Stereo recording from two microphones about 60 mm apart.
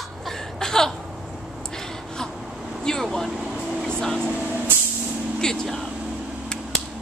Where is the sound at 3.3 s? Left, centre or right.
Centre.